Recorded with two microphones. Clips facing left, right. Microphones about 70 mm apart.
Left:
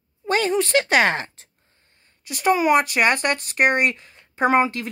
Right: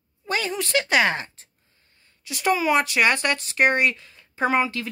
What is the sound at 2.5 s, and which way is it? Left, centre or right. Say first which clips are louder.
Speech: left 2 dB; left.